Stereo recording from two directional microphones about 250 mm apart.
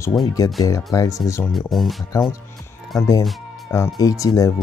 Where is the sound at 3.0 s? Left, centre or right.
Centre.